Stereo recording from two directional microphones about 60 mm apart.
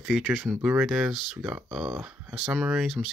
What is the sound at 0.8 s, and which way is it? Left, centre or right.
Speech, centre.